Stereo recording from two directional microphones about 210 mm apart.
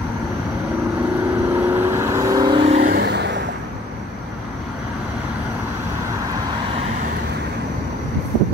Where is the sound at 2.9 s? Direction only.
55° right (ahead or behind).